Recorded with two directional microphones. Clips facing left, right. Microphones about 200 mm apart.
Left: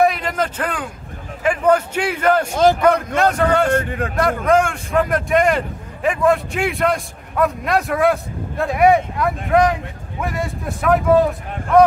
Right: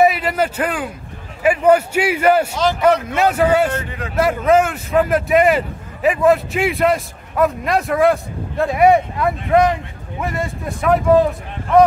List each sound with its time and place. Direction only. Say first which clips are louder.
0.0 s a man's voice: right 2 dB; 5° right (ahead or behind)
2.5 s a man's voice: left 4 dB; 50° left (ahead or behind)
3.2 s a man's voice: right 1 dB; 5° right (ahead or behind)
3.7 s a man's voice: left 6 dB; 50° left (ahead or behind)
4.2 s a man's voice: right 2 dB; 5° right (ahead or behind)